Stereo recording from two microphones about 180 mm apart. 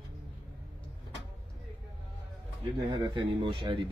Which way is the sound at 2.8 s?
25° right (ahead or behind).